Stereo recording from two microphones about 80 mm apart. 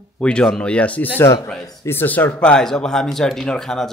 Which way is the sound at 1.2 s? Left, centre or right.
Left.